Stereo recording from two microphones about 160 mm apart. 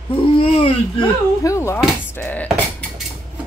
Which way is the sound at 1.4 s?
20° left (ahead or behind).